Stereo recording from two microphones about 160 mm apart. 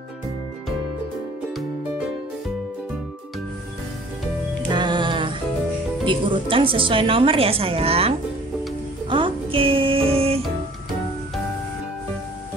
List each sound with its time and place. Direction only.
4.6 s music: 30° right (ahead or behind)
6.0 s a woman's voice: 35° right (ahead or behind)
9.1 s music: 35° right (ahead or behind)